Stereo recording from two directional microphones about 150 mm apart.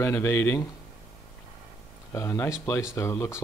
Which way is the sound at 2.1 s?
15° left (ahead or behind).